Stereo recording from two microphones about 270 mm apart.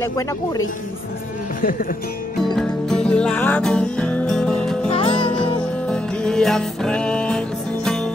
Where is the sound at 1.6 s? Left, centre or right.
Left.